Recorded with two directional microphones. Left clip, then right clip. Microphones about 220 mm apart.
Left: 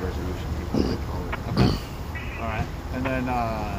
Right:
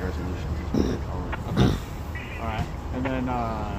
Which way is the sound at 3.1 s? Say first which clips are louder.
Left 3 dB; 20° left (ahead or behind).